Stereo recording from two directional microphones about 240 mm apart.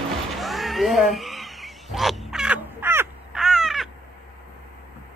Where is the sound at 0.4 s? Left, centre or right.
Centre.